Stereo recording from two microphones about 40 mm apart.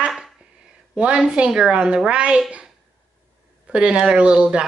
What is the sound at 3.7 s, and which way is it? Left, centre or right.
Speech, right.